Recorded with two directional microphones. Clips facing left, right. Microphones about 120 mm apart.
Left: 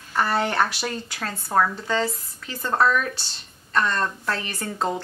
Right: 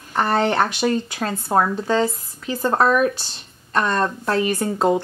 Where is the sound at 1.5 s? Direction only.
35° right (ahead or behind).